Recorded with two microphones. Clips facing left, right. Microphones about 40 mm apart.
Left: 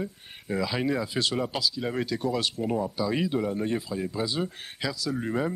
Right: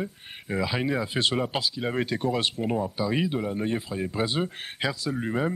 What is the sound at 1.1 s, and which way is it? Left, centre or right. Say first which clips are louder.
Speech: right 2 dB; right.